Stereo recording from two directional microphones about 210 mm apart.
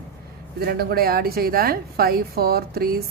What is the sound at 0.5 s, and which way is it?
A woman's voice, 45° right (ahead or behind).